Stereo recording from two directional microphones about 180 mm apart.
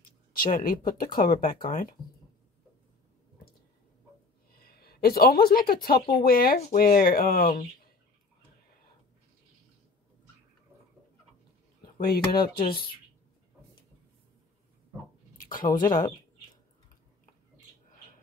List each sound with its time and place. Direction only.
0.4 s speech: 50° left (ahead or behind)
4.5 s a woman's voice: 60° left (ahead or behind)
11.8 s speech: 60° left (ahead or behind)
15.3 s a sound: 50° left (ahead or behind)
15.7 s speech: 25° left (ahead or behind)